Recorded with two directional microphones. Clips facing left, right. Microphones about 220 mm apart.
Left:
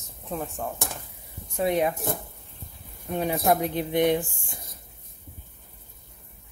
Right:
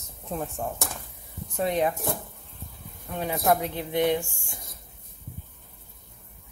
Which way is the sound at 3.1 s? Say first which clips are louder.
Left 1 dB; 20° left (ahead or behind).